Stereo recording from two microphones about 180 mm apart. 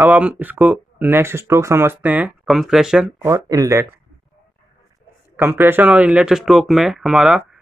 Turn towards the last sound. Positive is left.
turn(degrees=-5)  # may be behind; listen again after turning